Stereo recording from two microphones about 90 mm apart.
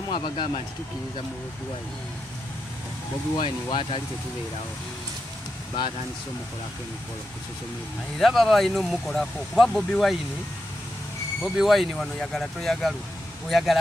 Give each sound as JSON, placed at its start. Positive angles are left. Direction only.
{"t": 0.1, "sound": "speech", "side_deg": 65}
{"t": 3.3, "sound": "speech", "side_deg": 70}
{"t": 8.2, "sound": "speech", "side_deg": 5}
{"t": 11.4, "sound": "speech", "side_deg": 0}